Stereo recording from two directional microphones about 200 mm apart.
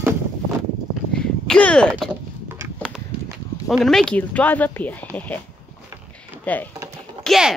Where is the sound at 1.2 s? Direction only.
5° left (ahead or behind).